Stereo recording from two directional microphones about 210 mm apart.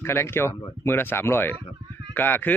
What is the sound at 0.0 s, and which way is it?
Speech, 10° left (ahead or behind).